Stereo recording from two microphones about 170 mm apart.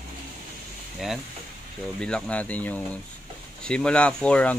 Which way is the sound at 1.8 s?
5° left (ahead or behind).